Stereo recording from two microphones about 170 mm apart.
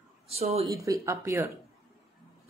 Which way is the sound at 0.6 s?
20° right (ahead or behind).